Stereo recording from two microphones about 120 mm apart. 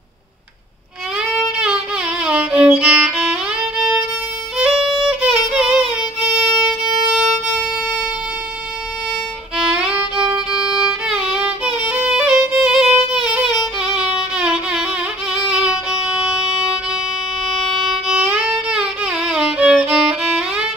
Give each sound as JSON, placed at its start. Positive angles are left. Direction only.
{"t": 1.1, "sound": "violin", "side_deg": -5}
{"t": 4.6, "sound": "music", "side_deg": 0}
{"t": 9.6, "sound": "violin", "side_deg": -5}
{"t": 15.3, "sound": "music", "side_deg": -5}
{"t": 17.8, "sound": "music", "side_deg": -5}